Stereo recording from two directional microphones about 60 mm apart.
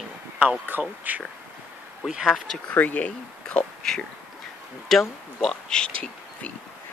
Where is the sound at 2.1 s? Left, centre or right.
Centre.